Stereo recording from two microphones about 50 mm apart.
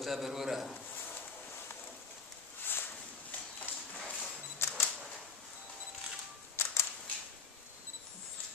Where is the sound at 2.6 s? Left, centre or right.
Left.